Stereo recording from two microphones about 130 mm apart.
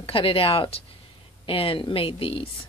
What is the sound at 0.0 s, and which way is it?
A woman's voice, 45° left (ahead or behind).